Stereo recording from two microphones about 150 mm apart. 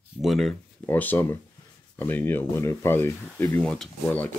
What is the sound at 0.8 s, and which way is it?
Speech, 15° left (ahead or behind).